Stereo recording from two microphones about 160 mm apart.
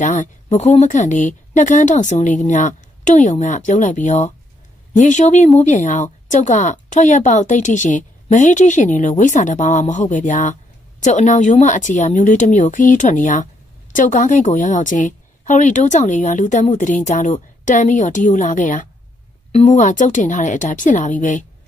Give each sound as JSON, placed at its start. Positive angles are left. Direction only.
{"t": 0.0, "sound": "a woman's voice", "side_deg": 50}